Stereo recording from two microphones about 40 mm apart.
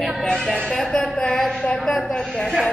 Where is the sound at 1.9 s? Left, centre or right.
Left.